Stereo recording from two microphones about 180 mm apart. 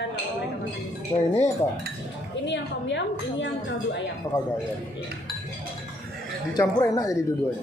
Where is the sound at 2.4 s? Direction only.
85° left.